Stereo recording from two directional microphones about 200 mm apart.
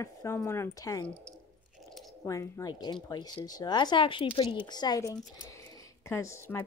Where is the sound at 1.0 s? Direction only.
5° left (ahead or behind).